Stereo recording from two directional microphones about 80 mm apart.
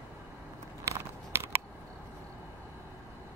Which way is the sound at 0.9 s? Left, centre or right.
Right.